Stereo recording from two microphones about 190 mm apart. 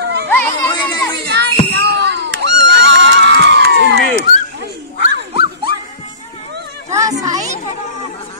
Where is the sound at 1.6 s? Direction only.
60° right (ahead or behind).